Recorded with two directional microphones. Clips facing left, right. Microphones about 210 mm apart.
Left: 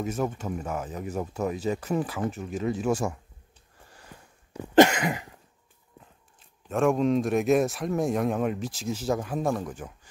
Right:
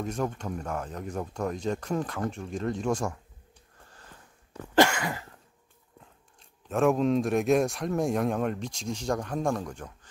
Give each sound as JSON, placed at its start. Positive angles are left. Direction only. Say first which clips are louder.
{"t": 0.0, "sound": "speech", "louder": "left 2 dB", "side_deg": 5}
{"t": 3.9, "sound": "cough", "louder": "left 4 dB", "side_deg": 10}
{"t": 5.9, "sound": "speech", "louder": "left 1 dB", "side_deg": 0}